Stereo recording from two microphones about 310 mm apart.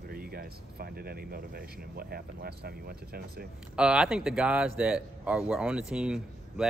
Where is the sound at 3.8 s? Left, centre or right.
Centre.